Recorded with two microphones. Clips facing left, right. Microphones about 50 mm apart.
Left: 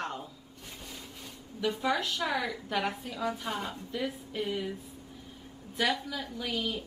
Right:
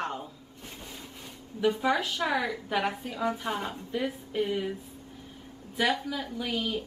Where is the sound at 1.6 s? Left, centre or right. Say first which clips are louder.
Right 4 dB; centre.